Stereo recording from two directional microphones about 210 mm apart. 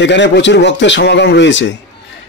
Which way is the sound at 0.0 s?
60° left (ahead or behind).